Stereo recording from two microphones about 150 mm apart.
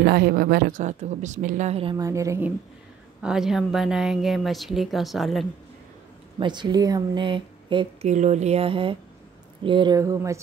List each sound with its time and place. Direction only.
0.0 s speech: 90° right; by 2.0 s 40° right (ahead or behind)
2.0 s a woman's voice: 20° right (ahead or behind)
3.2 s a woman's voice: 5° right (ahead or behind)
6.4 s a woman's voice: 30° right (ahead or behind)
8.1 s speech: 50° right (ahead or behind); by 9.9 s 35° right (ahead or behind)
9.9 s a woman's voice: 20° right (ahead or behind)